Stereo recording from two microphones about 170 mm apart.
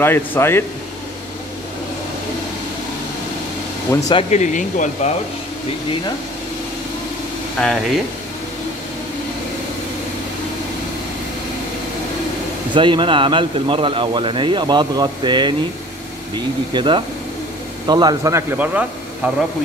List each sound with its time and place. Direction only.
0.0 s speech: 15° left (ahead or behind)
4.1 s speech: 40° left (ahead or behind)
7.6 s speech: 5° left (ahead or behind)
12.7 s speech: 30° right (ahead or behind)
16.7 s speech: 30° right (ahead or behind); by 19.3 s 10° right (ahead or behind)